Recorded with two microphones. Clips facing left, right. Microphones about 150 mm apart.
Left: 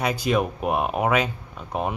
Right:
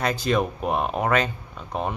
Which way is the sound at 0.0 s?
10° left (ahead or behind).